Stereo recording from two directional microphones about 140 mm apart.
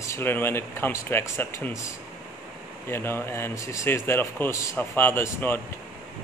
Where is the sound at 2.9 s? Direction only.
15° left (ahead or behind).